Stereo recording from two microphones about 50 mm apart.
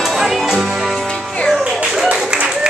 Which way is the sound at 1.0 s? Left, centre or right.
Centre.